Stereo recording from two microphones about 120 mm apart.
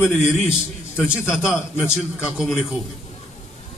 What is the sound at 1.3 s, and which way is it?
A man's voice, 5° right (ahead or behind).